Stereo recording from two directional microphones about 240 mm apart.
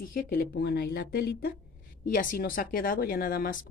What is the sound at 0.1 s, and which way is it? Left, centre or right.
A woman's voice, left.